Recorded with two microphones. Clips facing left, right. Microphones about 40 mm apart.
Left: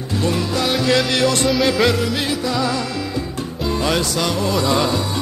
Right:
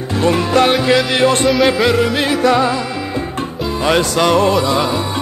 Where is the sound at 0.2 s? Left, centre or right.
Right.